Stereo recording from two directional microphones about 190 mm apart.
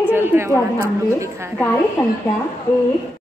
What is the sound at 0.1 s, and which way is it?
A woman's voice, 10° right (ahead or behind).